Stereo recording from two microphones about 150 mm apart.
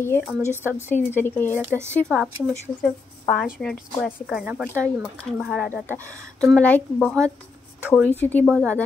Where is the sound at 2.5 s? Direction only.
10° left (ahead or behind).